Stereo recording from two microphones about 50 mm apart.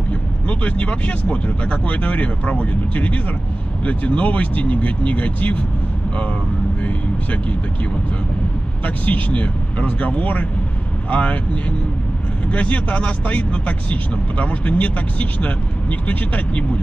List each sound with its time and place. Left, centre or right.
0.1 s speech: left
6.8 s speech: left
8.8 s speech: left
12.4 s speech: left